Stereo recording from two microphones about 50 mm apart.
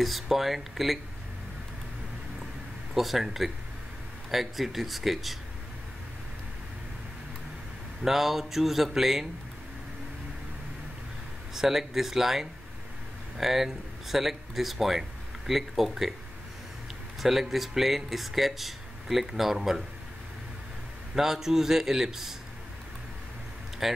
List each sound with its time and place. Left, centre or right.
0.0 s speech: centre
2.9 s speech: centre
8.0 s speech: centre
11.5 s a man's voice: centre
17.2 s speech: centre
21.1 s a man's voice: centre
23.8 s speech: centre